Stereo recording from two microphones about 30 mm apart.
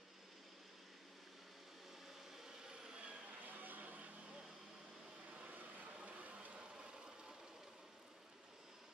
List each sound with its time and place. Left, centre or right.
2.3 s vehicle: centre
2.8 s vehicle: right
3.3 s vehicle: right
5.3 s vehicle: right
5.9 s a sound: right